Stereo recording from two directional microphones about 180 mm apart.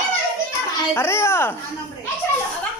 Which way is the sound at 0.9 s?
15° left (ahead or behind).